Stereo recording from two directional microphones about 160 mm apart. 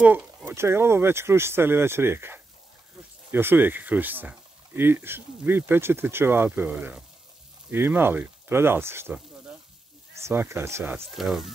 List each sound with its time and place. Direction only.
0.0 s a sound: 5° right (ahead or behind)
0.6 s speech: 15° right (ahead or behind)
11.1 s speech: centre (ahead or behind)